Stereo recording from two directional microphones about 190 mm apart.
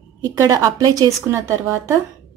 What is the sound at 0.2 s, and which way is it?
A woman's voice, 15° right (ahead or behind).